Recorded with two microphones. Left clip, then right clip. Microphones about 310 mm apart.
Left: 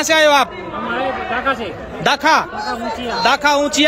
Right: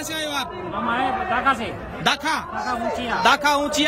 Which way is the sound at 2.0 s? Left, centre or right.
Centre.